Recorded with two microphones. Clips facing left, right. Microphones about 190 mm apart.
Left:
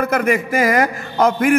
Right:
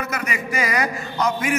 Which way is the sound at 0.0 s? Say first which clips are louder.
Left 10 dB; 55° left (ahead or behind).